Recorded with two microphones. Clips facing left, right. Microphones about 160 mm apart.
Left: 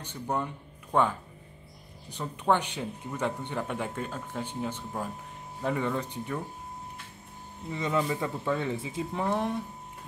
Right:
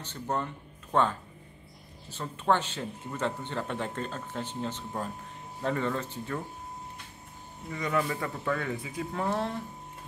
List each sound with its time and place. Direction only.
0.0 s speech: 10° left (ahead or behind)
7.7 s speech: 20° left (ahead or behind)
9.2 s speech: 15° left (ahead or behind)